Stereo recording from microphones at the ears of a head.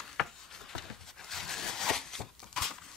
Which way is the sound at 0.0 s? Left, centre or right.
Left.